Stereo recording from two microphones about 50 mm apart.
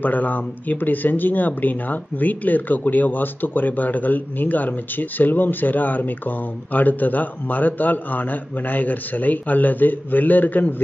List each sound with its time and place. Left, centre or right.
0.0 s speech: left